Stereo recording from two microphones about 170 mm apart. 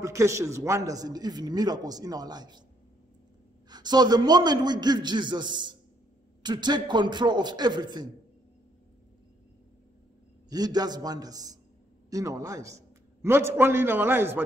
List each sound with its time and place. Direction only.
0.0 s a man's voice: 15° right (ahead or behind)
3.6 s a man's voice: 25° right (ahead or behind)
10.5 s a man's voice: 25° right (ahead or behind)